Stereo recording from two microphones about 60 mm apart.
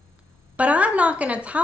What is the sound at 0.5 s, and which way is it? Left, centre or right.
A woman's voice, right.